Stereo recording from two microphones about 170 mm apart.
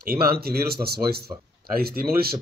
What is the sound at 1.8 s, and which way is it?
Speech, 65° right (ahead or behind).